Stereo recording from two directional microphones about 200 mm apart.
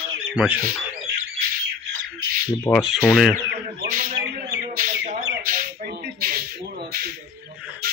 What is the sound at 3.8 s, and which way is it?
Bird, 50° right (ahead or behind).